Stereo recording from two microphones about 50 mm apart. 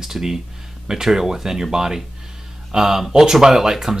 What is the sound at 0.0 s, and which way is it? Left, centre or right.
Speech, centre.